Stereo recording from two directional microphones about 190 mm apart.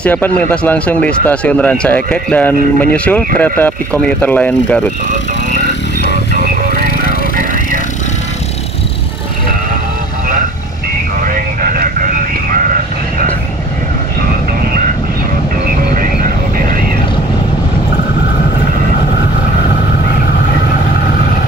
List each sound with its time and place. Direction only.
0.0 s speech: 10° left (ahead or behind)
11.2 s vehicle: 45° right (ahead or behind)